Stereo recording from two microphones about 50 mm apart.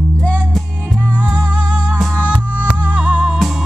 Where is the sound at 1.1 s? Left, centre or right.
Right.